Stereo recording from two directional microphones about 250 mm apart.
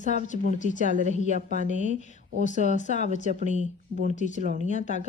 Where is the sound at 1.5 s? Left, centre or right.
Left.